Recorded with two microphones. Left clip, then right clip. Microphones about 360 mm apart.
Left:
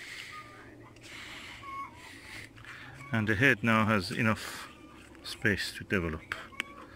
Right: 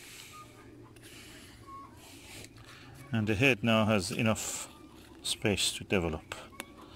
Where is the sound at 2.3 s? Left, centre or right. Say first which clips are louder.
Left 6 dB; centre.